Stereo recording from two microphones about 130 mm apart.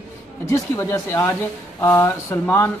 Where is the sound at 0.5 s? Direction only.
20° left (ahead or behind).